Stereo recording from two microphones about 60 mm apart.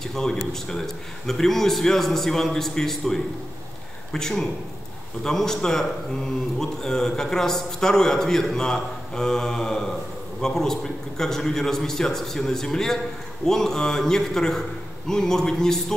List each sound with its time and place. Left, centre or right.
0.0 s a man's voice: centre